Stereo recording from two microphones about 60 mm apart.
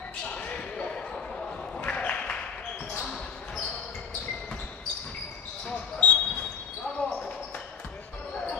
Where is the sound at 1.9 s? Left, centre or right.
Left.